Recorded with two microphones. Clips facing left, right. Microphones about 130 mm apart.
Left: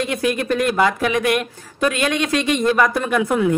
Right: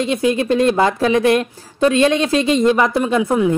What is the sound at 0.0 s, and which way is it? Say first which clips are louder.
Speech: right 4 dB; 25° right (ahead or behind).